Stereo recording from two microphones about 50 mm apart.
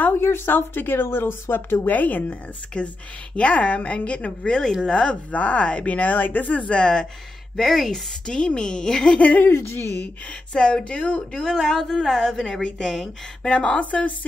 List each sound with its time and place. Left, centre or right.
0.2 s speech: left
2.8 s speech: left
6.7 s a woman's voice: centre
7.5 s a woman's voice: centre
9.2 s speech: left
9.5 s speech: left
10.5 s a woman's voice: centre
13.4 s speech: centre